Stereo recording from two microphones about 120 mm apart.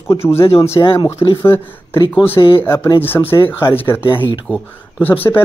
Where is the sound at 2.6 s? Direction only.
20° left (ahead or behind).